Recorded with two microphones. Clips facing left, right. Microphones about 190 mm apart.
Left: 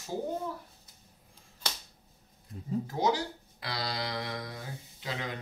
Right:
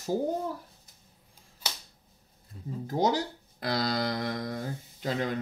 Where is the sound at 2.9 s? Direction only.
40° right (ahead or behind).